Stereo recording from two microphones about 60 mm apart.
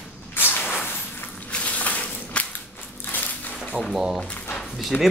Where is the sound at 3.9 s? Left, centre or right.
Centre.